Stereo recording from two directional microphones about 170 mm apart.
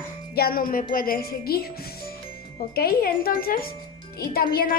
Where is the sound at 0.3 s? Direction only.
60° left (ahead or behind).